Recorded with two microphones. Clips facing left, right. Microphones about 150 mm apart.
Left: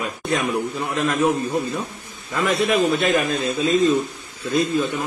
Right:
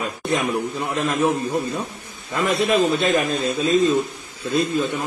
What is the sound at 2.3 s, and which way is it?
A man's voice, 20° right (ahead or behind).